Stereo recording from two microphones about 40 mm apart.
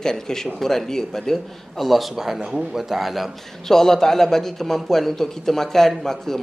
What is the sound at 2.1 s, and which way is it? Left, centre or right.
A man's voice, centre.